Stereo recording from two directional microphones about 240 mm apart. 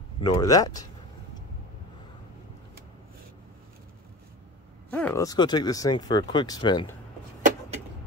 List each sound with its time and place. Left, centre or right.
0.2 s speech: centre
4.9 s speech: centre